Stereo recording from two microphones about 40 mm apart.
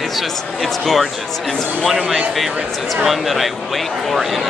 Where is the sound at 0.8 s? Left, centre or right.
Centre.